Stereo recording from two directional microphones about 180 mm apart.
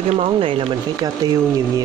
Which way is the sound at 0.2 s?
30° right (ahead or behind).